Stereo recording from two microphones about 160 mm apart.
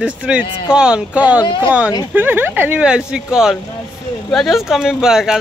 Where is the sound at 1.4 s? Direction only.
25° left (ahead or behind).